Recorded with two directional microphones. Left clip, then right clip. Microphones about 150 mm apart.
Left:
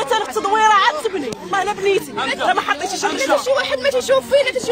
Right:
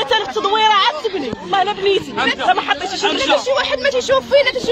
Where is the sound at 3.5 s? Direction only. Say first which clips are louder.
Right 1 dB; 30° left (ahead or behind).